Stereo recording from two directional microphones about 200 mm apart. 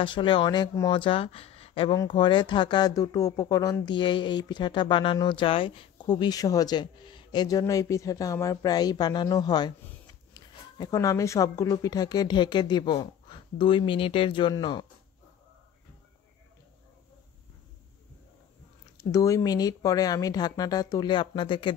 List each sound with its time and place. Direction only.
0.0 s speech: 25° left (ahead or behind)
19.1 s speech: 15° left (ahead or behind)